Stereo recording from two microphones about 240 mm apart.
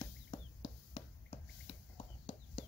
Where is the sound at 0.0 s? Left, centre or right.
Centre.